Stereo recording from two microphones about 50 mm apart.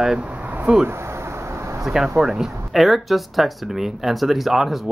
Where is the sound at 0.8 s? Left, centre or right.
Right.